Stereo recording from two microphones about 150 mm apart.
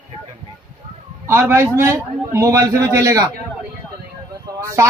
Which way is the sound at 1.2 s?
15° right (ahead or behind).